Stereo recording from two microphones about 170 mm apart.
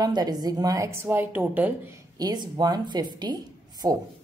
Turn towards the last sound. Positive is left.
turn(degrees=-25)  # may be behind; listen again after turning